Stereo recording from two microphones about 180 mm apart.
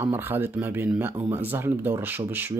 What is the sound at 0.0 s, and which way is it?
Speech, 10° right (ahead or behind).